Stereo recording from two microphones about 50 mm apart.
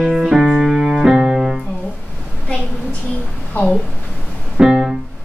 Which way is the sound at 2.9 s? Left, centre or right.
Left.